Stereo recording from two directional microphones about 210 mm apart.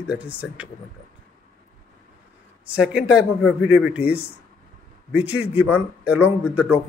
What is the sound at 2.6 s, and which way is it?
A man's voice, 5° right (ahead or behind).